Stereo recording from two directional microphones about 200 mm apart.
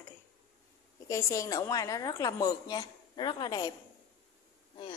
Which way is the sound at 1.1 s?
15° left (ahead or behind).